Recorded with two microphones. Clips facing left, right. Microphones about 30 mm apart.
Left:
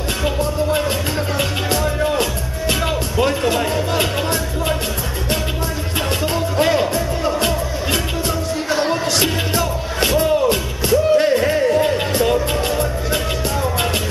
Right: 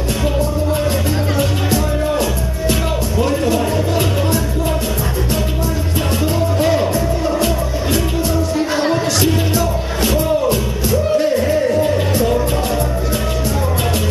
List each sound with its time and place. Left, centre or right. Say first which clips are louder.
0.2 s music: even; centre
6.7 s music: right 2 dB; centre
7.3 s music: right 2 dB; left
9.6 s music: right 1 dB; left